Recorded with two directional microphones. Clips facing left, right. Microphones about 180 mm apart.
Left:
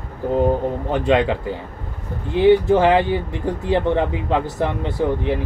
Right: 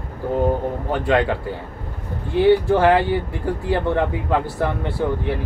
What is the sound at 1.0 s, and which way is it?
Speech, 20° left (ahead or behind).